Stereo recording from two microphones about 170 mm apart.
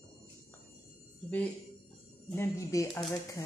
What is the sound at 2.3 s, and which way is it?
Speech, 15° left (ahead or behind).